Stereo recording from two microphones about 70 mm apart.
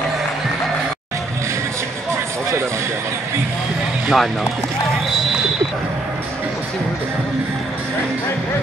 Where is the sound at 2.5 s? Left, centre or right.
Right.